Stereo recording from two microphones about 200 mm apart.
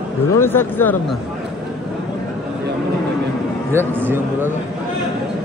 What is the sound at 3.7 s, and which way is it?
Speech, 10° right (ahead or behind).